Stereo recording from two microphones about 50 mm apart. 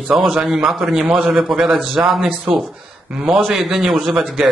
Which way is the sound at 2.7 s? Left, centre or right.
Centre.